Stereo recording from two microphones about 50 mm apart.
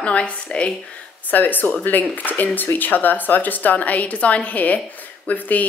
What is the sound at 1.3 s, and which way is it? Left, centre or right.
Speech, left.